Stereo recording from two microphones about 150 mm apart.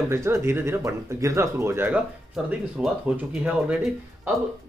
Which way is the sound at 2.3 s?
5° right (ahead or behind).